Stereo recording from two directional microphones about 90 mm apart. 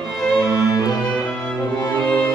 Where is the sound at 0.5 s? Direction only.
40° left (ahead or behind).